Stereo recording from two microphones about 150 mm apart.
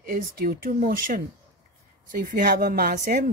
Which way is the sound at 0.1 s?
75° right (ahead or behind).